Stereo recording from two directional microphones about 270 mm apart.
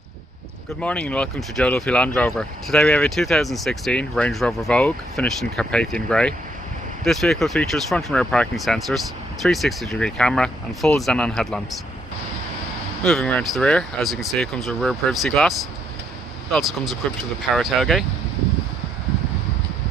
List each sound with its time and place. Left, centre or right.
0.7 s speech: centre
13.0 s speech: centre